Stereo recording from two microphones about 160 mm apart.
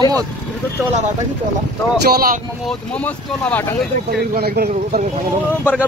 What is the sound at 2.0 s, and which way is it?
Speech, 65° right (ahead or behind).